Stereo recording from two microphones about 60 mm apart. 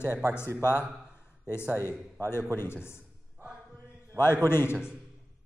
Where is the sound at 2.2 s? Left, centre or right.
Left.